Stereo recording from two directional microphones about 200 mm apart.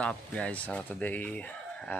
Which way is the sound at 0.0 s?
5° left (ahead or behind).